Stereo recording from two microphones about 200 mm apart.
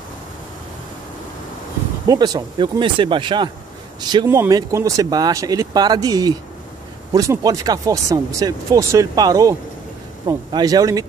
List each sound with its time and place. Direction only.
2.0 s speech: 20° right (ahead or behind)